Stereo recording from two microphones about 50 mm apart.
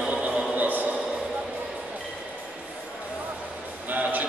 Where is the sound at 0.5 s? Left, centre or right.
Right.